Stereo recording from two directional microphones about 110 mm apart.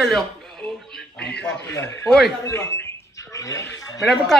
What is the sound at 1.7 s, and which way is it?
Speech, 25° left (ahead or behind).